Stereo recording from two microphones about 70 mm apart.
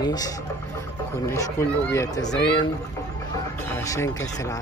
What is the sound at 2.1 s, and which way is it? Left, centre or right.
Speech, left.